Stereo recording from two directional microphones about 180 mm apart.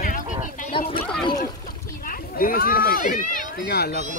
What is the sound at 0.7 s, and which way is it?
Speech, 30° left (ahead or behind).